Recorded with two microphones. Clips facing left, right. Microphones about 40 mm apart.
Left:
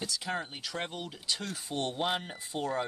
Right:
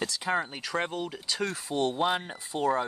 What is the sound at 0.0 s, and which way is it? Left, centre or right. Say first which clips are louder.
Speech: right 6 dB; right.